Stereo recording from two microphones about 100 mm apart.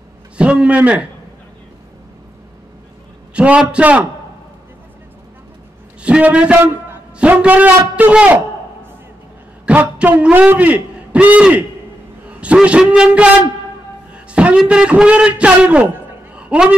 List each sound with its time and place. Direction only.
0.4 s a man's voice: 10° right (ahead or behind)
3.3 s a man's voice: 10° right (ahead or behind)
6.0 s a man's voice: 10° right (ahead or behind)
9.7 s a man's voice: 15° right (ahead or behind)
16.3 s a sound: 10° right (ahead or behind)